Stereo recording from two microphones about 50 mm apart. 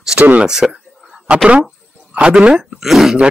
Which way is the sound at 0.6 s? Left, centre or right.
Centre.